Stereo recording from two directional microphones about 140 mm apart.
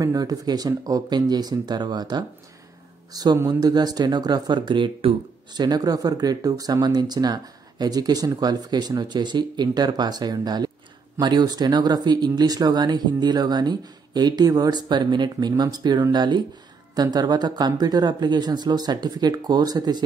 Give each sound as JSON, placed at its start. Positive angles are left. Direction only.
{"t": 0.0, "sound": "speech", "side_deg": -25}